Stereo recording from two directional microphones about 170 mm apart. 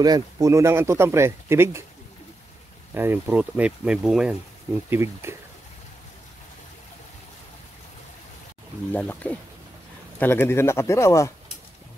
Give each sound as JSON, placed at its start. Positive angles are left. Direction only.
{"t": 0.0, "sound": "speech", "side_deg": -20}
{"t": 2.9, "sound": "speech", "side_deg": -10}
{"t": 4.8, "sound": "speech", "side_deg": -15}
{"t": 8.9, "sound": "speech", "side_deg": 10}